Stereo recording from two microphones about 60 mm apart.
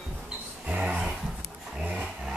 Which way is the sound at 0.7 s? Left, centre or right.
Centre.